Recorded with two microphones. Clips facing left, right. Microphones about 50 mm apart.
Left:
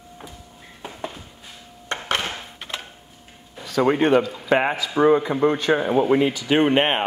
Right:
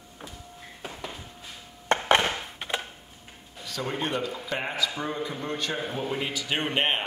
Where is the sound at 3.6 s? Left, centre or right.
Left.